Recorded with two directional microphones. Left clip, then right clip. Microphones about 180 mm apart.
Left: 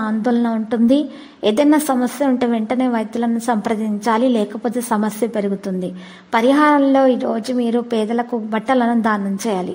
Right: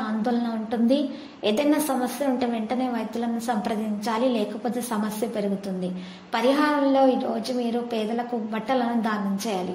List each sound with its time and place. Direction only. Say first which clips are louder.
0.2 s a woman's voice: left 9 dB; 45° left (ahead or behind)